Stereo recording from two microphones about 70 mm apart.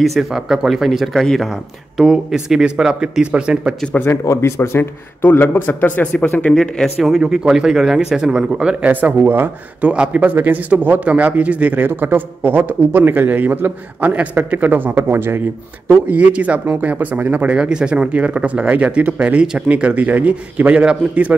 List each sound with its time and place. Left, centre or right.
0.0 s speech: centre
2.0 s speech: centre
4.1 s speech: left
6.5 s speech: centre
7.1 s speech: centre; by 15.4 s right
15.9 s speech: right